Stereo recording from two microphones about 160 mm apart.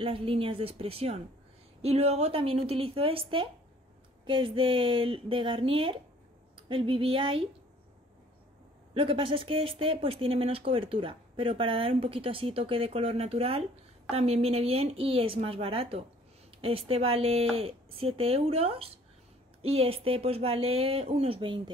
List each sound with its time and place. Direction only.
0.0 s a woman's voice: 35° right (ahead or behind)
8.9 s speech: 35° right (ahead or behind)